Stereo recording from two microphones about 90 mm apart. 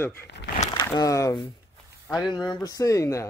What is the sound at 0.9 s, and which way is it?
Speech, 35° left (ahead or behind).